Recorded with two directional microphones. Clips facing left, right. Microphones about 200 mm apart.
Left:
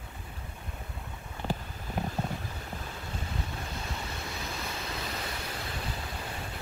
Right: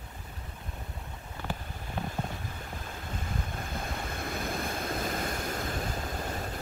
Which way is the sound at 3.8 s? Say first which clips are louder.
Right 3 dB; 55° right (ahead or behind).